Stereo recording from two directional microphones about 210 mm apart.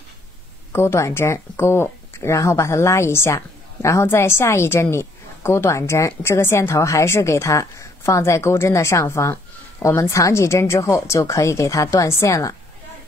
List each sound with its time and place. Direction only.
0.7 s speech: 10° left (ahead or behind)